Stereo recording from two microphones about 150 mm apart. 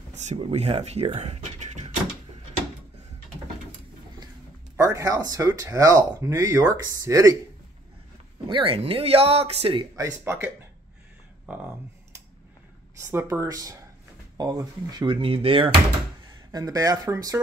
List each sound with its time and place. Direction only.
0.1 s a sound: 50° right (ahead or behind)
0.4 s speech: 45° right (ahead or behind)
4.7 s speech: 20° right (ahead or behind)
8.5 s speech: 35° right (ahead or behind)
9.9 s speech: 15° right (ahead or behind)
11.4 s music: 10° right (ahead or behind)
13.0 s speech: 15° right (ahead or behind); by 15.8 s 35° right (ahead or behind)
16.5 s speech: 25° right (ahead or behind)